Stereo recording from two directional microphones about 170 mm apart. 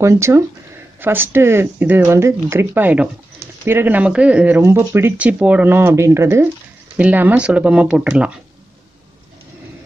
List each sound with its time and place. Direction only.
0.0 s speech: 15° right (ahead or behind)